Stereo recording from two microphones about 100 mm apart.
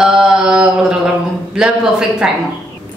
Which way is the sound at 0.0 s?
5° right (ahead or behind).